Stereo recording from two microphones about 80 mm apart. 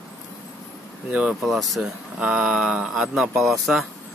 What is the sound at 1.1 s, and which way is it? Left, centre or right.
Speech, centre.